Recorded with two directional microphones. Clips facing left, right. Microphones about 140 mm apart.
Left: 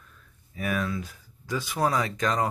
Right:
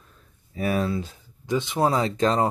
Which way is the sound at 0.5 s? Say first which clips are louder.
Right 5 dB; 30° right (ahead or behind).